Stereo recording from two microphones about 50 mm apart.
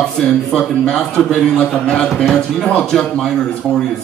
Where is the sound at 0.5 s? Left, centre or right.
Centre.